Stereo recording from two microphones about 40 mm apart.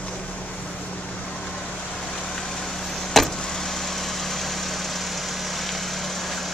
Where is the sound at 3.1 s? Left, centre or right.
Centre.